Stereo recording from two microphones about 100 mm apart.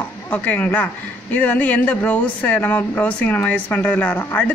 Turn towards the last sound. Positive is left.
turn(degrees=15)  # may be behind; listen again after turning